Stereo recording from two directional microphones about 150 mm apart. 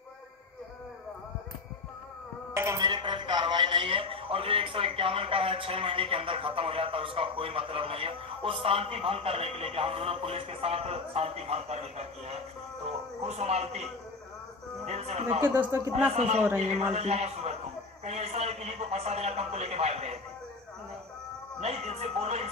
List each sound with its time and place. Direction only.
2.5 s a sound: 20° right (ahead or behind)
2.8 s a man's voice: 30° right (ahead or behind); by 13.8 s 45° right (ahead or behind)
14.9 s a man's voice: 45° right (ahead or behind)
15.4 s a man's voice: 15° right (ahead or behind)
15.9 s a man's voice: 45° right (ahead or behind)
18.0 s a sound: 45° right (ahead or behind)
21.5 s a man's voice: 45° right (ahead or behind)